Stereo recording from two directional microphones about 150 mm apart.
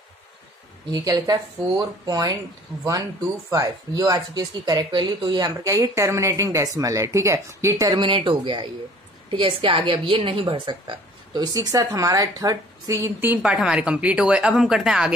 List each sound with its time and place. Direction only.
0.9 s a woman's voice: 25° right (ahead or behind)
3.4 s a woman's voice: 20° right (ahead or behind); by 15.1 s 5° right (ahead or behind)